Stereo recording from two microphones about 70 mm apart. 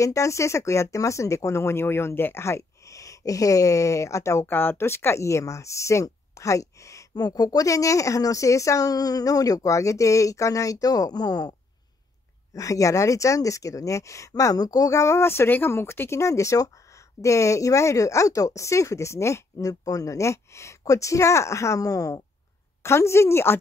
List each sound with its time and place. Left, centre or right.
0.0 s speech: left
7.2 s speech: left
12.5 s speech: left
19.7 s speech: left
22.8 s a woman's voice: left